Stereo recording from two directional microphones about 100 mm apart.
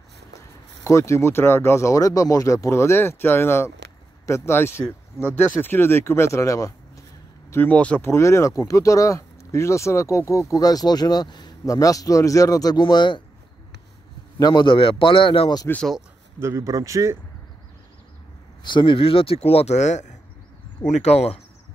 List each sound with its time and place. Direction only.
0.8 s speech: 30° left (ahead or behind)
7.5 s speech: 15° left (ahead or behind)
8.0 s speech: 30° left (ahead or behind)
12.8 s speech: 50° left (ahead or behind)
14.4 s a man's voice: 50° left (ahead or behind)
16.3 s speech: 30° right (ahead or behind)
18.6 s speech: 50° left (ahead or behind); by 19.8 s 90° left
21.0 s speech: 90° left